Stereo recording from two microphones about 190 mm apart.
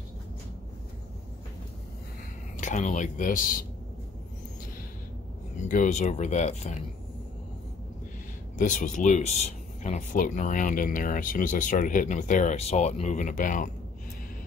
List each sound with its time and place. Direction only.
2.6 s speech: 40° left (ahead or behind)
5.7 s speech: 40° left (ahead or behind)
8.5 s speech: 40° left (ahead or behind)